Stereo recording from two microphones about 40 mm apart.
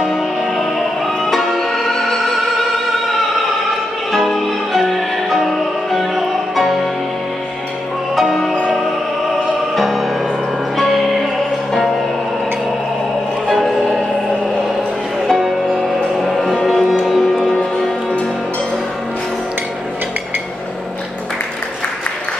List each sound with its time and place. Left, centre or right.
1.2 s music: centre
4.1 s music: centre
8.2 s music: centre
9.8 s music: centre
16.2 s music: centre
17.3 s music: centre